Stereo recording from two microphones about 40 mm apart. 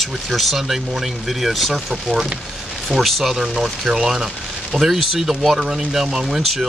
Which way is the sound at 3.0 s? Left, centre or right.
Centre.